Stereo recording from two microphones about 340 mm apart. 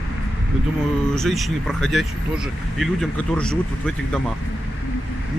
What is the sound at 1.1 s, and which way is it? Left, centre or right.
Speech, centre.